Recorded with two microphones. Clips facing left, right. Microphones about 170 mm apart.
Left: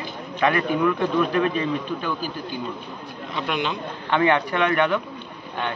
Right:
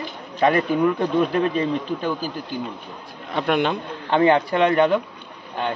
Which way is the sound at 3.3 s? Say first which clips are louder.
Right 6 dB; 55° right (ahead or behind).